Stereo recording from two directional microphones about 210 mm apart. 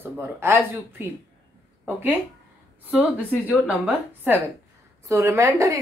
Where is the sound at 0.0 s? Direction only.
10° right (ahead or behind).